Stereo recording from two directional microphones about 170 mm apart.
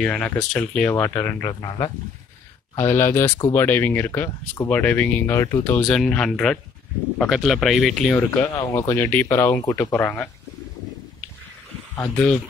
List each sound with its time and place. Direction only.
0.0 s speech: 5° left (ahead or behind)
1.5 s speech: 25° left (ahead or behind)
5.6 s speech: 5° left (ahead or behind)
8.2 s speech: 20° left (ahead or behind)